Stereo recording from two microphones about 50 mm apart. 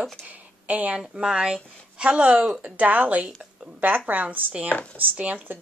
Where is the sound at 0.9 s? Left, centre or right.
Centre; by 4.5 s right.